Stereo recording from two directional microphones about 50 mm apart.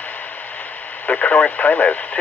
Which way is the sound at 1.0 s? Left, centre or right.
Left.